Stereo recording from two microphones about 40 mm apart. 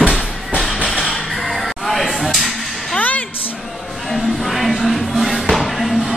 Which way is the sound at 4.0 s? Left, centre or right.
Centre.